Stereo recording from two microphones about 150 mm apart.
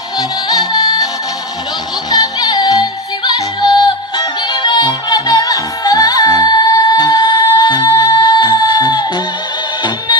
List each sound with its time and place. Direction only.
0.5 s music: 25° left (ahead or behind)
2.0 s music: 25° left (ahead or behind)